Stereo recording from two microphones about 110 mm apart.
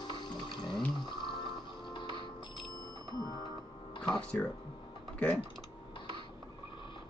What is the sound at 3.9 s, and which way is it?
Music, 40° left (ahead or behind).